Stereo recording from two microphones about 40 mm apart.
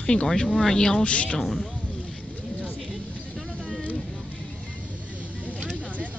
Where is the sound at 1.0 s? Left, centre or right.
Left.